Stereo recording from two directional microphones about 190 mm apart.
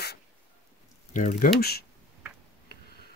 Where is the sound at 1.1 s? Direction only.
45° left (ahead or behind).